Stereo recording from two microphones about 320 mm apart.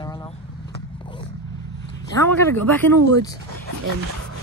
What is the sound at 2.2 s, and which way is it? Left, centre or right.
Speech, centre.